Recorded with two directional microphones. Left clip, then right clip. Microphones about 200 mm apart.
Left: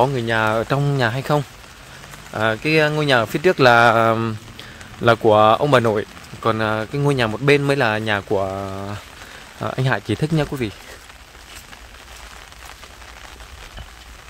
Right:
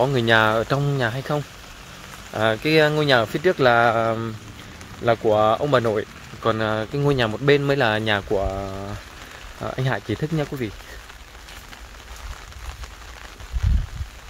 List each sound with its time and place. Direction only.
0.1 s speech: 10° right (ahead or behind)
0.5 s speech: 10° left (ahead or behind)
2.3 s speech: 10° left (ahead or behind)
8.3 s speech: 15° left (ahead or behind)